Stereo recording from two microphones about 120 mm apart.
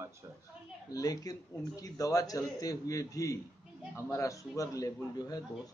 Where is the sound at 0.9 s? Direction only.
30° left (ahead or behind).